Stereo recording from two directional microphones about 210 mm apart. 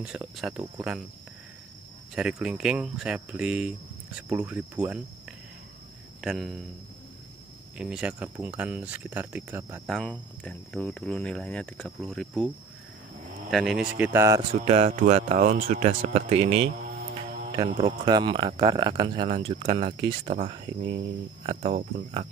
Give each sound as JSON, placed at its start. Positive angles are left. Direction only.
{"t": 0.0, "sound": "speech", "side_deg": -5}
{"t": 2.1, "sound": "speech", "side_deg": -5}
{"t": 6.2, "sound": "speech", "side_deg": 0}
{"t": 7.7, "sound": "speech", "side_deg": -5}
{"t": 9.8, "sound": "speech", "side_deg": 0}
{"t": 13.9, "sound": "speech", "side_deg": -10}
{"t": 14.5, "sound": "speech", "side_deg": -30}
{"t": 17.7, "sound": "speech", "side_deg": -20}
{"t": 21.5, "sound": "speech", "side_deg": -35}